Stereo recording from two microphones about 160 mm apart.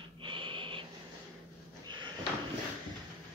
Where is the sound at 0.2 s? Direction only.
30° right (ahead or behind).